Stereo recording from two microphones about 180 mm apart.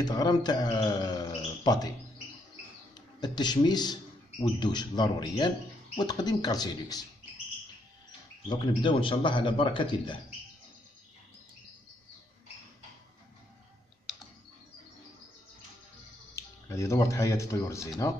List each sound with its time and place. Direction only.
0.0 s speech: 20° left (ahead or behind)
3.2 s a man's voice: 25° left (ahead or behind)
8.5 s a man's voice: 30° left (ahead or behind)
16.3 s speech: 15° left (ahead or behind)